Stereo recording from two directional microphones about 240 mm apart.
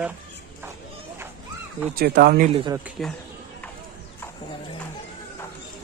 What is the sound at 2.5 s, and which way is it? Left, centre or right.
Speech, centre.